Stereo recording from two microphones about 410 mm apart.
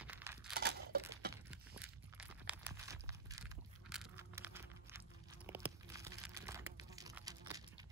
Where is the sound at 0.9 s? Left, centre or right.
Right.